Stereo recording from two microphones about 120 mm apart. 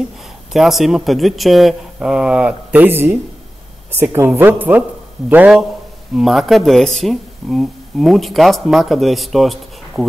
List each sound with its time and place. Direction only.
0.5 s a woman's voice: centre (ahead or behind)